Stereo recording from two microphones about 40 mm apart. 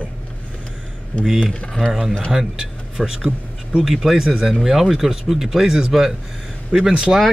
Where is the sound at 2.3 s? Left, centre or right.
Centre.